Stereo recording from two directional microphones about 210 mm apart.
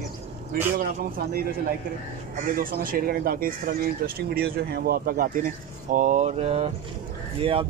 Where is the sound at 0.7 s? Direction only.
40° right (ahead or behind).